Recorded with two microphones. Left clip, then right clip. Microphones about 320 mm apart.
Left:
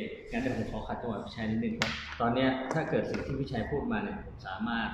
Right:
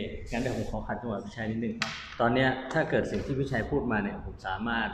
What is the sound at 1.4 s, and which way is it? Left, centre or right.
Speech, right.